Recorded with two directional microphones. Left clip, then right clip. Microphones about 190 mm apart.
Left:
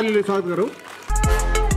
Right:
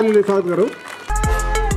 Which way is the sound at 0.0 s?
25° left (ahead or behind).